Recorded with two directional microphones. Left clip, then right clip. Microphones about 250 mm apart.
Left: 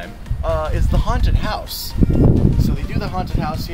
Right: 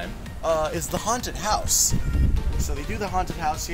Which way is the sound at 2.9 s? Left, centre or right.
Left.